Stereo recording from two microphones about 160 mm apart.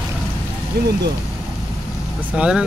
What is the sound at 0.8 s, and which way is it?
Speech, 70° right (ahead or behind).